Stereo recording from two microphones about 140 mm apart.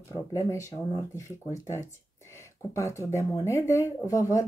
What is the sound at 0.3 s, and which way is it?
Speech, 25° left (ahead or behind).